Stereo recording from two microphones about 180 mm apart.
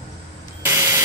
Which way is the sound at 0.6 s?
15° right (ahead or behind).